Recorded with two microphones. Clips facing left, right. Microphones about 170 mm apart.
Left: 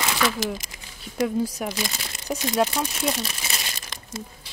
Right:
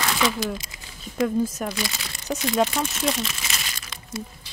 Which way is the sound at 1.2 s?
10° left (ahead or behind).